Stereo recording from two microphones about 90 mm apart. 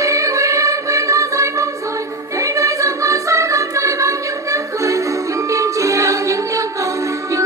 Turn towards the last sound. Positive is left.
turn(degrees=-35)  # may be behind; listen again after turning